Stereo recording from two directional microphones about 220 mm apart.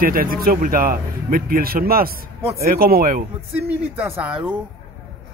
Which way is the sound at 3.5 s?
5° right (ahead or behind).